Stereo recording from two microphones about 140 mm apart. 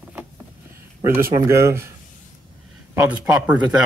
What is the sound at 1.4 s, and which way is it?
Speech, 20° right (ahead or behind).